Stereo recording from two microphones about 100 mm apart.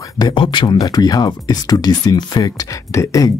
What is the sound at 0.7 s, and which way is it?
Speech, 40° left (ahead or behind).